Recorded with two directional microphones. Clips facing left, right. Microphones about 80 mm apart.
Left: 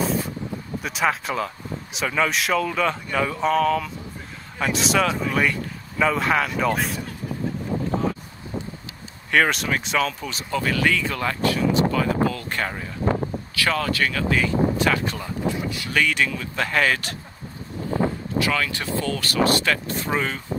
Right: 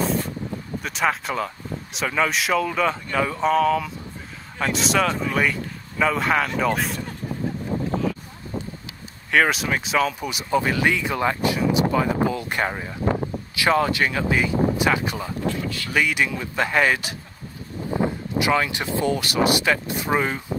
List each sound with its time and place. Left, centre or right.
0.0 s vehicle: centre
0.8 s speech: centre
9.3 s speech: centre
10.2 s speech: centre
15.4 s speech: centre
15.9 s speech: centre
18.4 s speech: centre